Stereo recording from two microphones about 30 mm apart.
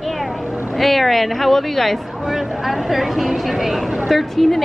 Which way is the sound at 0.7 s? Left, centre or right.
Centre.